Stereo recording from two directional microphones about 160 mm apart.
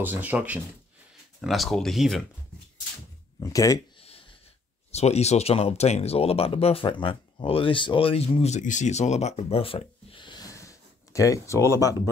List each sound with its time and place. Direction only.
0.0 s speech: 10° right (ahead or behind)
3.3 s speech: 20° left (ahead or behind)
4.9 s speech: 40° left (ahead or behind); by 12.0 s 20° left (ahead or behind)